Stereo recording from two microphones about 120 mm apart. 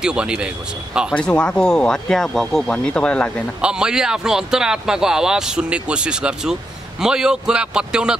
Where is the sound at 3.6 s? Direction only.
5° right (ahead or behind).